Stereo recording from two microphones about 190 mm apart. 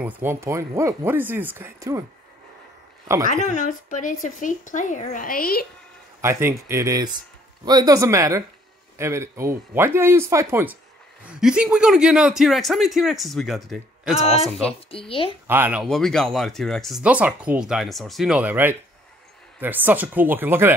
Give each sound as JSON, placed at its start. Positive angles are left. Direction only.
{"t": 0.0, "sound": "speech", "side_deg": -10}
{"t": 3.3, "sound": "speech", "side_deg": 40}
{"t": 6.2, "sound": "speech", "side_deg": -15}
{"t": 14.9, "sound": "speech", "side_deg": 30}
{"t": 15.4, "sound": "speech", "side_deg": -10}
{"t": 15.8, "sound": "speech", "side_deg": 0}